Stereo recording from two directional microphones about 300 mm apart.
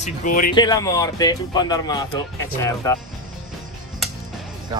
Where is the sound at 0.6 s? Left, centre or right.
Centre.